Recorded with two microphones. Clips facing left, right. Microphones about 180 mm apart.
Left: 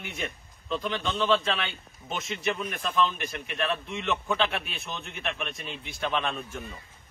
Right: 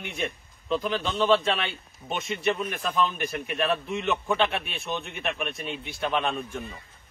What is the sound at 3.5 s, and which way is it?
Speech, 40° right (ahead or behind).